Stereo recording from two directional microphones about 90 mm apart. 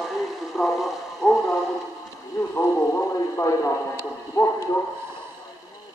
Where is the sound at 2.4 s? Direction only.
25° left (ahead or behind).